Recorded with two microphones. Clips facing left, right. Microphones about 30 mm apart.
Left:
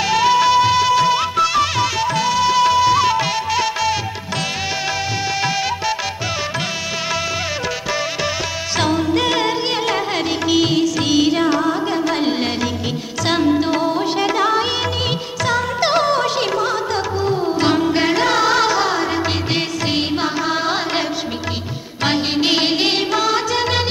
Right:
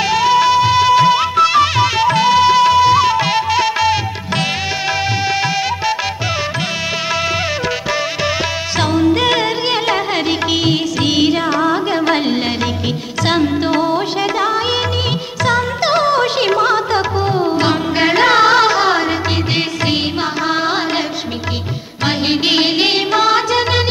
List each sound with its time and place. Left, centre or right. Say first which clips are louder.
0.0 s music: right 2 dB; centre
5.3 s music: right 3 dB; centre
8.7 s music: right 3 dB; centre
11.7 s carnatic music: right 4 dB; right
13.2 s music: right 1 dB; centre
15.4 s music: right 3 dB; centre
16.3 s music: right 5 dB; right
17.6 s music: right 1 dB; centre
20.4 s music: right 3 dB; centre
22.3 s music: right 3 dB; centre